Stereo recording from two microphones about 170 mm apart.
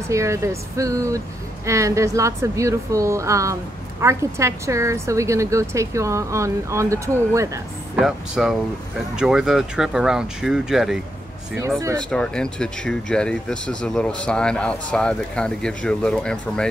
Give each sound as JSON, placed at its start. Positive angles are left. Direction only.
{"t": 0.1, "sound": "a woman's voice", "side_deg": -15}
{"t": 8.0, "sound": "speech", "side_deg": 0}
{"t": 12.0, "sound": "speech", "side_deg": 5}